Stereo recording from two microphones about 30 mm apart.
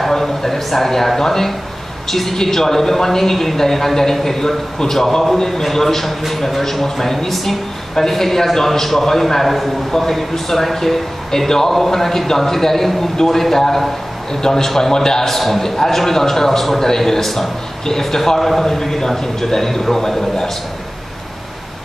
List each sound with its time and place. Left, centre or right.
0.1 s speech: centre